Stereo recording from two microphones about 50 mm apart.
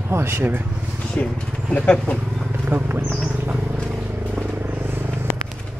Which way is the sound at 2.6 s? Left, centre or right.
Right.